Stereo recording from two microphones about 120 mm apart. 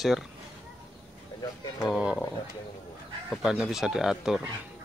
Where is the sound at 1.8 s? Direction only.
5° right (ahead or behind).